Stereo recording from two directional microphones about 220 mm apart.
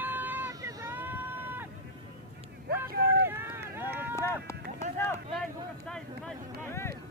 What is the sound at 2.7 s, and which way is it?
Vehicle, 45° right (ahead or behind).